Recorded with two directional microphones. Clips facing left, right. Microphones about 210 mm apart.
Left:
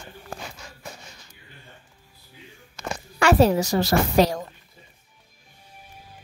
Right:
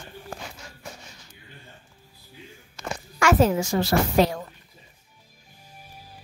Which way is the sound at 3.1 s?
35° left (ahead or behind).